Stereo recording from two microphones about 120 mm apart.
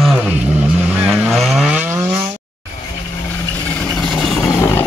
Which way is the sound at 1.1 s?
Centre (ahead or behind).